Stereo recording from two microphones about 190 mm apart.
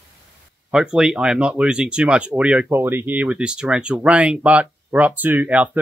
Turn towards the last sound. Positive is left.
turn(degrees=-10)  # may be behind; listen again after turning